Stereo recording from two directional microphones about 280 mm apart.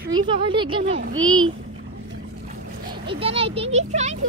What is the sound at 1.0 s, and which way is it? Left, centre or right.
Speech, right.